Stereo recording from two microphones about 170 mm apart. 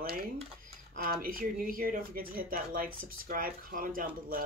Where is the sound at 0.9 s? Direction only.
55° right (ahead or behind).